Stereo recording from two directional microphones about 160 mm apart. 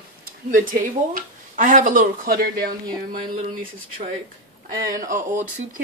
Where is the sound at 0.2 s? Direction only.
60° right (ahead or behind).